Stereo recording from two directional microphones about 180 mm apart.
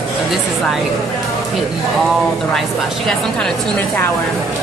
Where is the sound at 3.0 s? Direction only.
5° left (ahead or behind).